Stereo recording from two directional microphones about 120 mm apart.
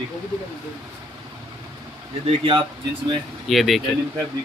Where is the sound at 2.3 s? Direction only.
45° right (ahead or behind).